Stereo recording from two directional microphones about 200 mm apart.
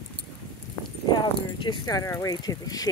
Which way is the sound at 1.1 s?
20° left (ahead or behind).